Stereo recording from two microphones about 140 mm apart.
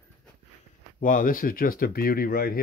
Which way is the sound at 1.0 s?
75° left (ahead or behind).